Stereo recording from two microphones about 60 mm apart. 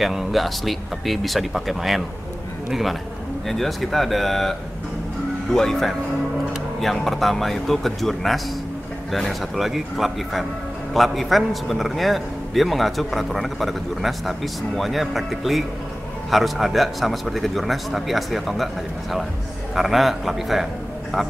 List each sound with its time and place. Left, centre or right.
0.0 s a man's voice: centre